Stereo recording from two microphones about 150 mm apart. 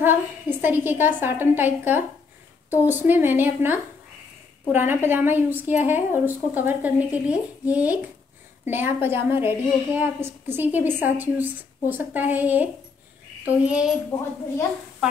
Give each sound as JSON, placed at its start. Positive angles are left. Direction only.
{"t": 0.0, "sound": "a woman's voice", "side_deg": -15}
{"t": 14.1, "sound": "a woman's voice", "side_deg": 15}